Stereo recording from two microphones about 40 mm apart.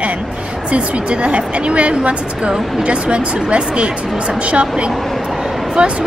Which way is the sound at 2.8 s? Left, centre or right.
Right.